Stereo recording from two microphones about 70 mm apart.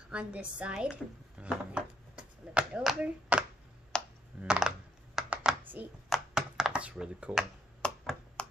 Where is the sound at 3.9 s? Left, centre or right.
Centre.